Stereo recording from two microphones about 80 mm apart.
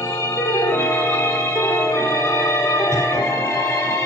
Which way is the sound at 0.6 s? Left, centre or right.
Left.